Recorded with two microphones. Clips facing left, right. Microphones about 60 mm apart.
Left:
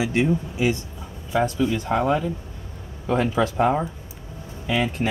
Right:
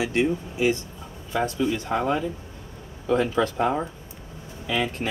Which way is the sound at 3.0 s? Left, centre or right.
Centre.